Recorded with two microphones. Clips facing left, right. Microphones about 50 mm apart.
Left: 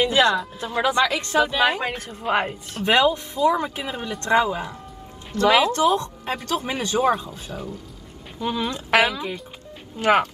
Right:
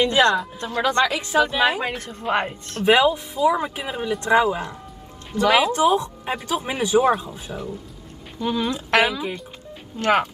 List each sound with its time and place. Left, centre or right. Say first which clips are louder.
0.0 s a woman's voice: right 1 dB; centre
1.0 s a woman's voice: right 1 dB; centre
2.8 s speech: right 2 dB; centre
5.3 s speech: even; centre
8.4 s a woman's voice: right 2 dB; centre